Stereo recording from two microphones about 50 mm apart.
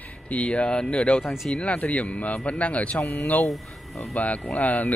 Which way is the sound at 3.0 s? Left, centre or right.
Left.